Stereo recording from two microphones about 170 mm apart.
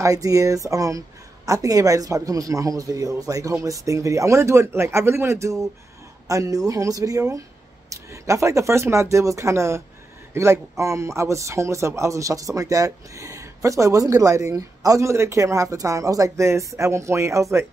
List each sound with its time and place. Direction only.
0.0 s a man's voice: 20° right (ahead or behind)